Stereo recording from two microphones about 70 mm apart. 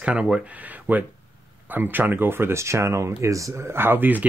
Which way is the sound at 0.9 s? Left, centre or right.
Right.